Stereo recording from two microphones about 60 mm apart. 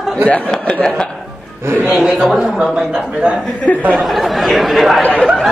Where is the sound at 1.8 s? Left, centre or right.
Centre.